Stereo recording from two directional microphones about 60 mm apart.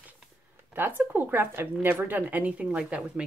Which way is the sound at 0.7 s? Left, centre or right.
Right.